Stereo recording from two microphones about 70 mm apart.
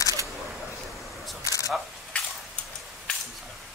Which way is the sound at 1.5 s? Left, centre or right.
Left.